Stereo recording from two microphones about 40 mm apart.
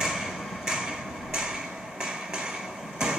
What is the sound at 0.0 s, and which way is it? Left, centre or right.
Hammer, centre.